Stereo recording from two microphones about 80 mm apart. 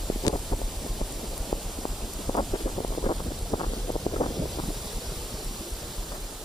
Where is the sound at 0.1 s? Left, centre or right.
Left.